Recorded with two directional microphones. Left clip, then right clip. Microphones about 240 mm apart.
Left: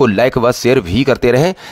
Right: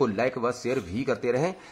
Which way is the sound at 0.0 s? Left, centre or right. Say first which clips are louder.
Left 14 dB; left.